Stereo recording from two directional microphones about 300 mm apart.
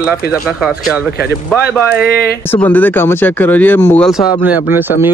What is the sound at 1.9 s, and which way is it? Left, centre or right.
Speech, left.